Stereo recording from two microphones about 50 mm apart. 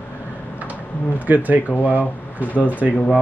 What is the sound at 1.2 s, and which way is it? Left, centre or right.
Speech, right.